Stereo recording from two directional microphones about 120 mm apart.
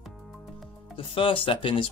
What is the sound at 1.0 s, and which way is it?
Speech, 50° left (ahead or behind).